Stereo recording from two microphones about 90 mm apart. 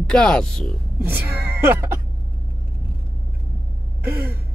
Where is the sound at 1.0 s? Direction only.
20° right (ahead or behind).